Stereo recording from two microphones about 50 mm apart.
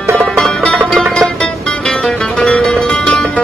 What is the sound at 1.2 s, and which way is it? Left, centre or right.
Music, centre.